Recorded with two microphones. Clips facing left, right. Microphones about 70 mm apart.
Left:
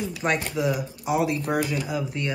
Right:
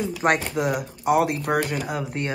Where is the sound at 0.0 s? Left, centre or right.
Right.